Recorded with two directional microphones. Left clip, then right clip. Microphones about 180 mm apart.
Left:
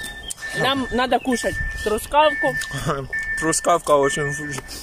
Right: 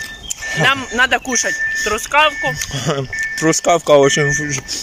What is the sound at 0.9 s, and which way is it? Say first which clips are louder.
Speech: right 5 dB; 20° left (ahead or behind).